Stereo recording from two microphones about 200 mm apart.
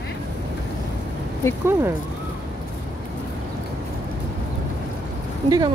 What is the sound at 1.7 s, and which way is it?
Speech, 10° right (ahead or behind).